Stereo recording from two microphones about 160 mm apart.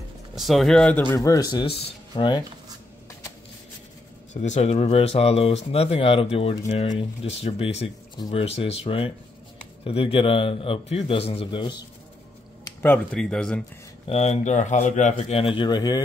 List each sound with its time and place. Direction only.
0.4 s speech: centre (ahead or behind)
1.1 s speech: 20° left (ahead or behind)
4.3 s a man's voice: 45° left (ahead or behind)
12.8 s speech: 10° left (ahead or behind)
14.0 s speech: 40° left (ahead or behind); by 16.0 s 25° left (ahead or behind)